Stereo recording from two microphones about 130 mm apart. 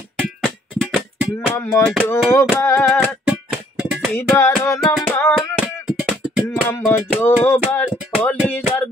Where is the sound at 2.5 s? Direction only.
20° left (ahead or behind).